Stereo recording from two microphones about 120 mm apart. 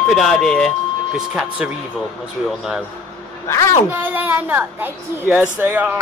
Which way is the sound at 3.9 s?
15° right (ahead or behind).